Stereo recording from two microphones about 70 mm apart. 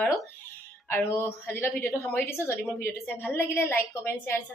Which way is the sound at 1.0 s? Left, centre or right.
Left.